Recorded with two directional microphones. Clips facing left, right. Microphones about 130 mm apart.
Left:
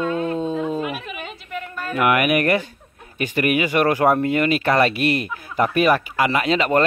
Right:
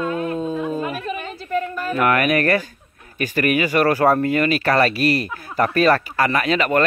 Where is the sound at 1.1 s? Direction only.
40° right (ahead or behind).